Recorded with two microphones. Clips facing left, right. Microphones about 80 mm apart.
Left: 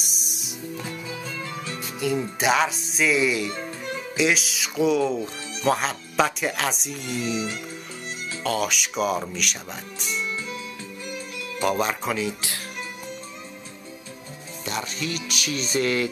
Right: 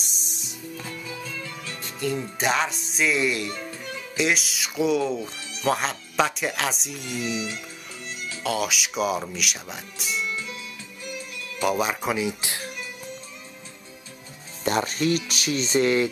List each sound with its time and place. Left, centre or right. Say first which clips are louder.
0.0 s music: left 2 dB; centre; by 1.8 s left
1.8 s speech: left 2 dB; centre
7.3 s music: left 2 dB; left
8.5 s speech: left 1 dB; centre
10.2 s music: left 1 dB; left
11.6 s speech: even; centre; by 12.6 s right
14.6 s speech: right 7 dB; right